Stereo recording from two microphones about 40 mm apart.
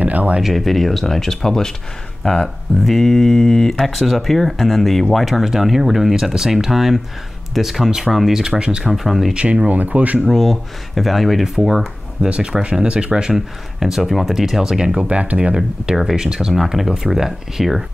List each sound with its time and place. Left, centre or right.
0.0 s speech: right
0.4 s speech: centre
2.8 s speech: centre
3.8 s speech: centre
8.4 s speech: centre
8.9 s speech: centre
9.3 s speech: right
9.7 s speech: right
10.2 s speech: centre
12.2 s speech: centre
13.3 s speech: centre
15.0 s speech: right
15.5 s speech: right
16.0 s speech: centre